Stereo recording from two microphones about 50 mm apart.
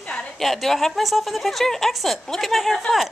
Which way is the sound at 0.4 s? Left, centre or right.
Centre.